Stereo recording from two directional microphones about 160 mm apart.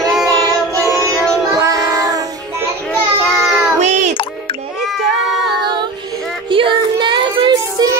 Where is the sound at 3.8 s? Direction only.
45° right (ahead or behind).